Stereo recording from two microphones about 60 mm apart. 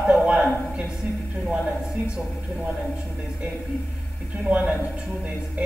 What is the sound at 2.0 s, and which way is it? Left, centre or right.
Speech, right.